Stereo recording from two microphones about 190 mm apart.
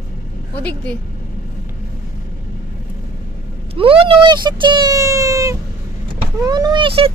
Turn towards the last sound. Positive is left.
turn(degrees=-30)  # may be behind; listen again after turning